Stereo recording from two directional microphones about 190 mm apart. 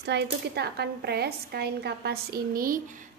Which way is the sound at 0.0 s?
60° right (ahead or behind).